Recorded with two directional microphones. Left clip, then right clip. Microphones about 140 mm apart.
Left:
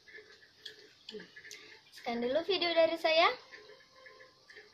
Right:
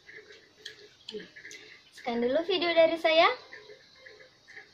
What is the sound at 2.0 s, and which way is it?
A woman's voice, 25° left (ahead or behind).